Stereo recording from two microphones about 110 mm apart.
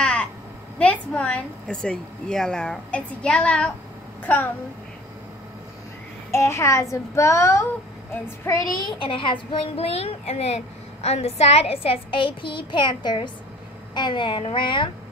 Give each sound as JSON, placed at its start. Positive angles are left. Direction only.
{"t": 0.0, "sound": "a sound", "side_deg": 10}
{"t": 0.7, "sound": "a woman's voice", "side_deg": 10}
{"t": 6.3, "sound": "a child's voice", "side_deg": 25}